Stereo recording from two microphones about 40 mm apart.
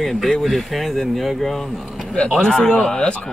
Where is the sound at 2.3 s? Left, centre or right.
Centre.